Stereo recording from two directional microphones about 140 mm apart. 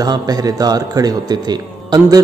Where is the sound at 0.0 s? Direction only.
25° right (ahead or behind).